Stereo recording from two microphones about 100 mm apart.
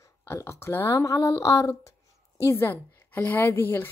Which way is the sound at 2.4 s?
20° left (ahead or behind).